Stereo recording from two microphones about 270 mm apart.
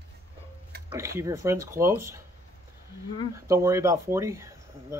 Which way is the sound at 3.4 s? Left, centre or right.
Centre.